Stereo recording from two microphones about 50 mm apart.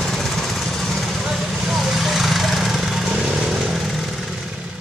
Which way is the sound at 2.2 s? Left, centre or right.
Centre.